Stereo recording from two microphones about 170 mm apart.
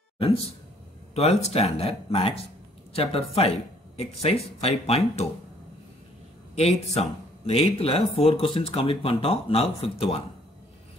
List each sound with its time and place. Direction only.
1.1 s speech: 40° left (ahead or behind)
6.5 s speech: 40° left (ahead or behind)